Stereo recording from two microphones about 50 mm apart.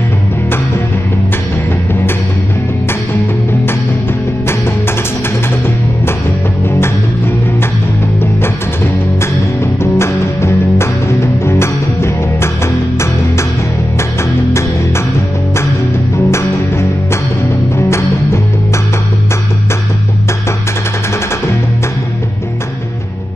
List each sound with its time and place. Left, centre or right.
9.2 s music: left
16.3 s music: left